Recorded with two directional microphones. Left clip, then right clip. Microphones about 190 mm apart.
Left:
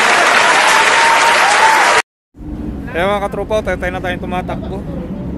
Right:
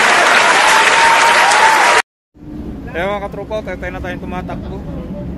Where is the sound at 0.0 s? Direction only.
Centre (ahead or behind).